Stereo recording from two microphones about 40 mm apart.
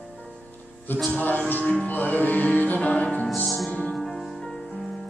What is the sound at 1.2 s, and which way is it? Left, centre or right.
Music, left.